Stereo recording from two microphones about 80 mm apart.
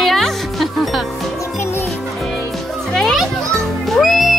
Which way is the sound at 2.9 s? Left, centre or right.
Centre.